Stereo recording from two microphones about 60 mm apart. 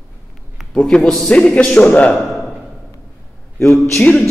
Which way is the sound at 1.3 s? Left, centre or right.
Centre.